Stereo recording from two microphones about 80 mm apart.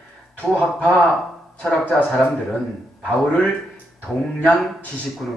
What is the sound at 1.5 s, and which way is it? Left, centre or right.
Speech, centre.